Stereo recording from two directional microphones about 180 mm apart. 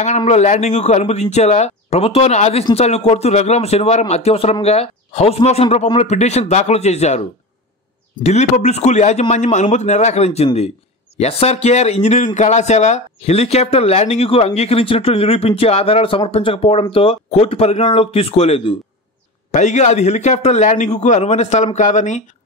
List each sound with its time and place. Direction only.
0.0 s speech: 40° left (ahead or behind)